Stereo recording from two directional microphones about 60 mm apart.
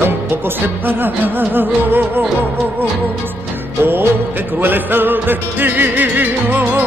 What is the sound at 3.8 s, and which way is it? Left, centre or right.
Music, right.